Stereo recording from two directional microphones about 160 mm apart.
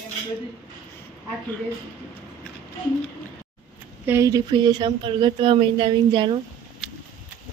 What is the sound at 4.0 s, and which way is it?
Speech, 15° right (ahead or behind).